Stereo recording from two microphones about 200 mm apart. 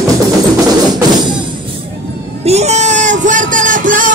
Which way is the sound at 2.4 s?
35° right (ahead or behind).